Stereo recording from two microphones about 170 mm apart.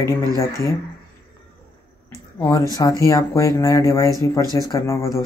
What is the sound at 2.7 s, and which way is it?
Speech, 20° left (ahead or behind).